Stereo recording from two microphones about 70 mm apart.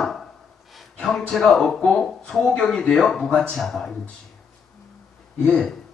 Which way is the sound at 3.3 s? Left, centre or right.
Centre.